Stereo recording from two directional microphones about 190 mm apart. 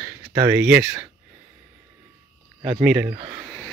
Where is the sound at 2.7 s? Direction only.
10° right (ahead or behind).